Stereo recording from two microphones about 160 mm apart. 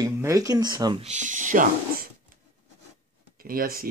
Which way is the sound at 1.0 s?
45° right (ahead or behind).